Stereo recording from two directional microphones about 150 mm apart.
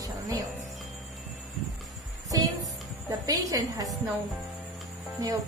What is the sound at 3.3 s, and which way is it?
Speech, 25° right (ahead or behind).